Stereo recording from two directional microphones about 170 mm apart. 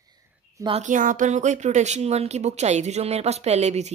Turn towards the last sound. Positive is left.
turn(degrees=-40)  # may be behind; listen again after turning